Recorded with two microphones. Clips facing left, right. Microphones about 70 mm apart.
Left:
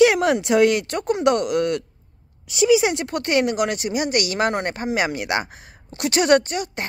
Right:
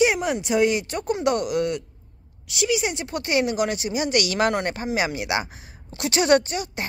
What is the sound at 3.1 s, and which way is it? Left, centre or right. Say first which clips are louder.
Speech: left 3 dB; left.